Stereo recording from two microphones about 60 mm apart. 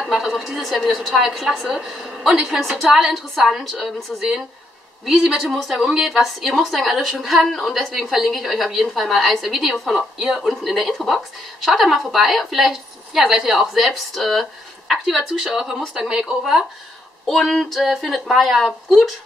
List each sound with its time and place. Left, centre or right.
0.1 s a woman's voice: centre
17.3 s a woman's voice: centre